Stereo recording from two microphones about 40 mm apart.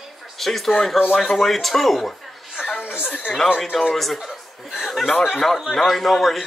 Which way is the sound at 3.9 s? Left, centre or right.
Centre.